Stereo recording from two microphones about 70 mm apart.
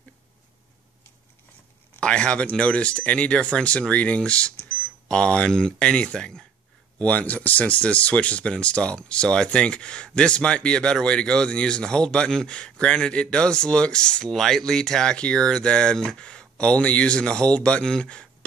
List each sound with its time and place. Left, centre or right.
2.0 s speech: centre